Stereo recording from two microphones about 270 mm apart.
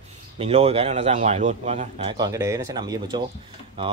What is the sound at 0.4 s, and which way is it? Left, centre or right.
Speech, right.